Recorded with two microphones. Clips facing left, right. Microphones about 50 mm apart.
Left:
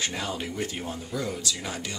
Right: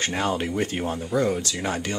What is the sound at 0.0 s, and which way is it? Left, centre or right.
Speech, right.